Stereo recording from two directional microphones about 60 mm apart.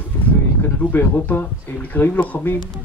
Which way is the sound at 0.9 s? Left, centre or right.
Left.